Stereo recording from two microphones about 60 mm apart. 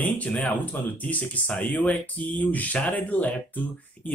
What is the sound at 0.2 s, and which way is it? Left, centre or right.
Speech, left.